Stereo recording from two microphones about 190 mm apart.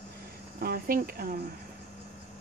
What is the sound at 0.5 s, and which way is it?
Speech, 50° right (ahead or behind).